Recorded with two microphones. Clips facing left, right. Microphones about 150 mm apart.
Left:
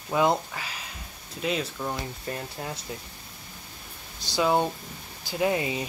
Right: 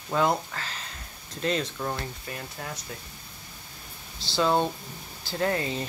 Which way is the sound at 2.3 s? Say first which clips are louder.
Left 3 dB; 25° left (ahead or behind).